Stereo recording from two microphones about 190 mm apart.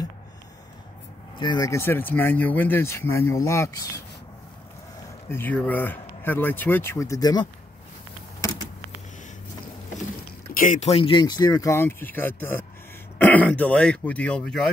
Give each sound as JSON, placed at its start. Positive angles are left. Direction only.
{"t": 1.4, "sound": "speech", "side_deg": 20}
{"t": 5.3, "sound": "speech", "side_deg": 10}
{"t": 10.5, "sound": "speech", "side_deg": 45}